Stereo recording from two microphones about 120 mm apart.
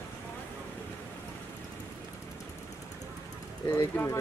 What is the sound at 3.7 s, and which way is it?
Speech, 20° left (ahead or behind).